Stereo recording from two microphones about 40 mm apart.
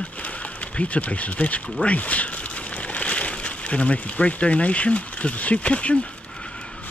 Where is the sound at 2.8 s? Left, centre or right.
Left.